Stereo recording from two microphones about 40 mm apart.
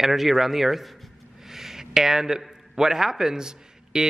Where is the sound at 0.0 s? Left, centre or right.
Centre.